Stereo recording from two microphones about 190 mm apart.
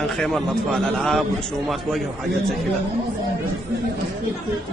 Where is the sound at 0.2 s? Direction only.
Centre (ahead or behind).